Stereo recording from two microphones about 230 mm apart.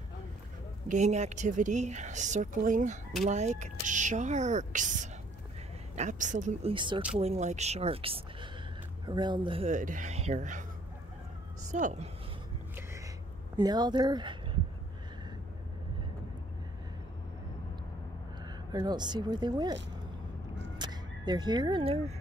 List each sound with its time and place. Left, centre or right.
0.8 s speech: right
6.7 s speech: right
11.7 s speech: right
13.6 s speech: centre
18.7 s speech: centre
20.7 s a sound: centre